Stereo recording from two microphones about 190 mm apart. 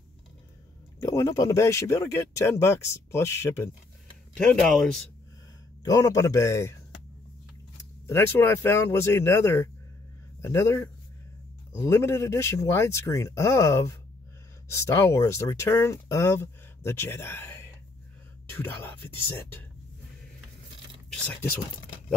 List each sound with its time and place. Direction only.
0.9 s speech: 20° left (ahead or behind)
4.3 s speech: 5° left (ahead or behind)
5.9 s speech: 15° left (ahead or behind)
8.1 s speech: 10° left (ahead or behind)